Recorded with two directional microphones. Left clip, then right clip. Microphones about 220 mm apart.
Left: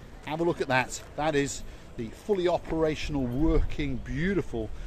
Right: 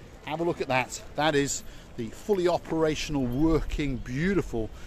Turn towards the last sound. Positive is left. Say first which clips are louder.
# right 2 dB
turn(degrees=-25)  # may be behind; listen again after turning